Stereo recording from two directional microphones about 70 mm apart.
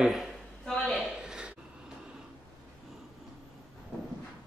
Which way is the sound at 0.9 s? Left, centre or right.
Centre.